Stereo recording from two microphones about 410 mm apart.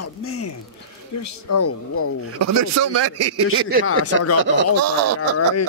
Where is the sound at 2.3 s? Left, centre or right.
Right.